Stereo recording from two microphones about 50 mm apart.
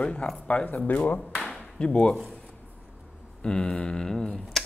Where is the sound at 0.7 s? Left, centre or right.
Left.